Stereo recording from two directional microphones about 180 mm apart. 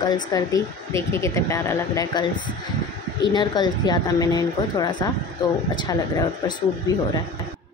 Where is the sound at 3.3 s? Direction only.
25° left (ahead or behind).